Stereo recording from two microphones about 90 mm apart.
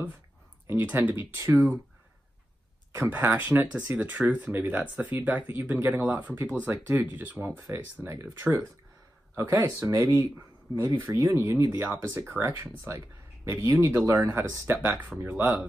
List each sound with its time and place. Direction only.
0.7 s speech: 20° right (ahead or behind)
3.0 s speech: 25° right (ahead or behind)